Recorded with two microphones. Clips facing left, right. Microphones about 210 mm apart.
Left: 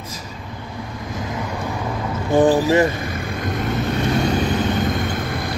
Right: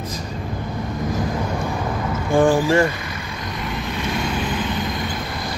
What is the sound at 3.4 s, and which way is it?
Vehicle, 50° left (ahead or behind).